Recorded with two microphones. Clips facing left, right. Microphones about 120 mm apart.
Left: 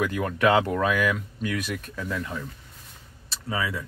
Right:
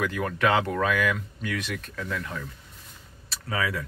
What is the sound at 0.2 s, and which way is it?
Speech, 35° left (ahead or behind).